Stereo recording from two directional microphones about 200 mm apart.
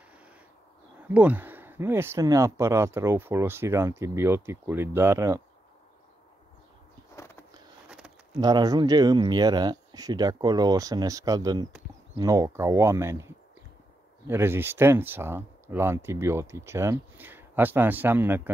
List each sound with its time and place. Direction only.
1.0 s speech: 5° right (ahead or behind)
8.4 s speech: 20° right (ahead or behind)